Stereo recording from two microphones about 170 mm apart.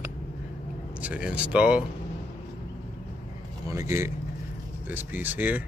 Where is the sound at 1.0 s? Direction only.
10° right (ahead or behind).